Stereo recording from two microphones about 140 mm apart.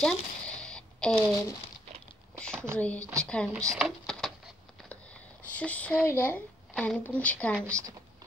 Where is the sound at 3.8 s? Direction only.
Centre (ahead or behind).